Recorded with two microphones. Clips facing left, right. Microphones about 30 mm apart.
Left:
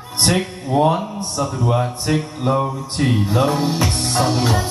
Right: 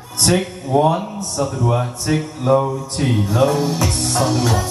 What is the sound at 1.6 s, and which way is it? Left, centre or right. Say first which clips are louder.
Mantra: even; centre.